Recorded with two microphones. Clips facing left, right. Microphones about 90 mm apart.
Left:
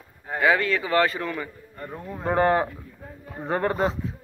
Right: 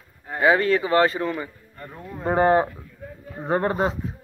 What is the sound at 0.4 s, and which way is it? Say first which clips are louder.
A man's voice: right 3 dB; 30° right (ahead or behind).